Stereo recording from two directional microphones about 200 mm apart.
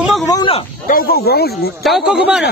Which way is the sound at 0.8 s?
45° left (ahead or behind).